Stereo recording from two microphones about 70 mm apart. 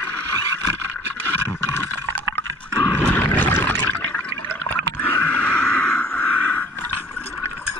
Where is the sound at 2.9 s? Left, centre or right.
Left.